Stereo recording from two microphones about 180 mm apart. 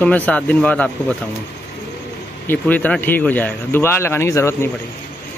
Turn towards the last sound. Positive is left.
turn(degrees=15)  # may be behind; listen again after turning